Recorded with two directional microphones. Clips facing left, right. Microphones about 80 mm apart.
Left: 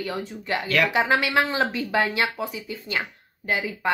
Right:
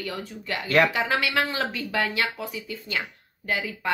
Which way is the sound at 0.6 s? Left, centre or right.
Right.